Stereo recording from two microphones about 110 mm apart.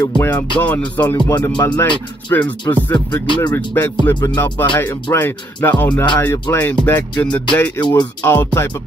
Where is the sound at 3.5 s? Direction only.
20° left (ahead or behind).